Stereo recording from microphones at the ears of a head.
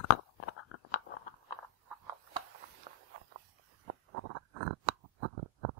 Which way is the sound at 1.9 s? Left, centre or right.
Right.